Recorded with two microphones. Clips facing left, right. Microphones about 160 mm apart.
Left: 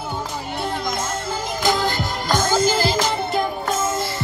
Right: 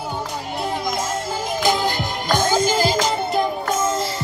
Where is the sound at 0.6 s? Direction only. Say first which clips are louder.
Right 1 dB; centre (ahead or behind).